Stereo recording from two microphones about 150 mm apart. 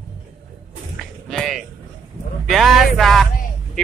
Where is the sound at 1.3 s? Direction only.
Centre (ahead or behind).